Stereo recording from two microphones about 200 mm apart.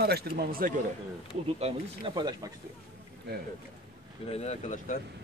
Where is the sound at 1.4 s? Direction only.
25° right (ahead or behind).